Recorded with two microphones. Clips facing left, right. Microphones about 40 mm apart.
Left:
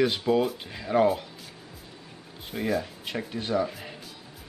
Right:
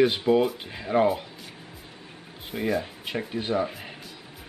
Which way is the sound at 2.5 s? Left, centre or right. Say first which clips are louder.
Right 1 dB; centre.